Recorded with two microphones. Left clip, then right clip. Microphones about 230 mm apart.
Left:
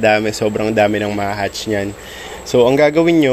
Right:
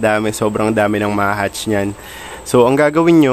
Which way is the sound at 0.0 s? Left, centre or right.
Centre.